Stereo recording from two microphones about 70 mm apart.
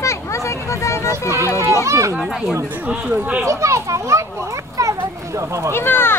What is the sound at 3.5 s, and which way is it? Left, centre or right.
Speech, right.